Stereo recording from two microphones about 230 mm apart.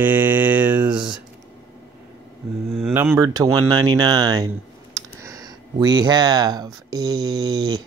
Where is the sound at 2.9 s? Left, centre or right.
Centre.